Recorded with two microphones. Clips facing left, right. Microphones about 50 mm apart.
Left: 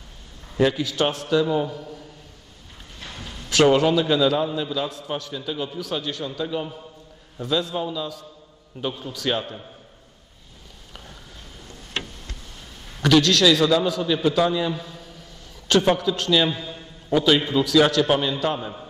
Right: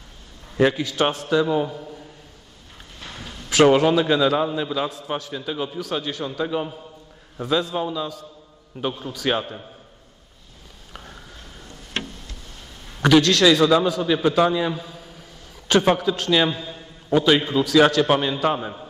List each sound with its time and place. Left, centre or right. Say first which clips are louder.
0.6 s a man's voice: right 1 dB; centre
13.0 s a man's voice: right 2 dB; centre
16.5 s a sound: even; centre
17.1 s a man's voice: right 1 dB; centre